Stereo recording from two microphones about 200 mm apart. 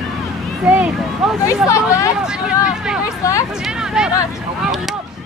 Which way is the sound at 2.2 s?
5° right (ahead or behind).